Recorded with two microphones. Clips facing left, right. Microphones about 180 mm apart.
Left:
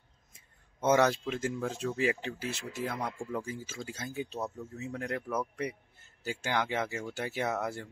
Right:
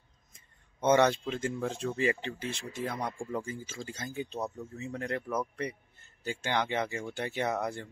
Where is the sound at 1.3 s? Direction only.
Centre (ahead or behind).